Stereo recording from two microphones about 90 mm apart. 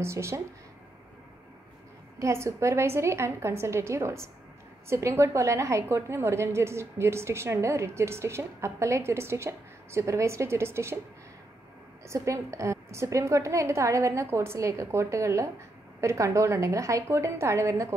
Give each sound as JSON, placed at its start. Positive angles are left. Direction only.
{"t": 0.0, "sound": "a woman's voice", "side_deg": -30}
{"t": 2.1, "sound": "a woman's voice", "side_deg": -35}
{"t": 12.1, "sound": "a woman's voice", "side_deg": -35}